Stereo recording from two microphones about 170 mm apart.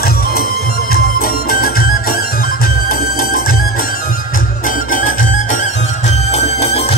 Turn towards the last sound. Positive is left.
turn(degrees=35)  # may be behind; listen again after turning